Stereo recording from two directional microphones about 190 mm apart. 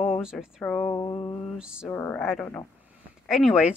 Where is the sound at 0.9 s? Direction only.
20° left (ahead or behind).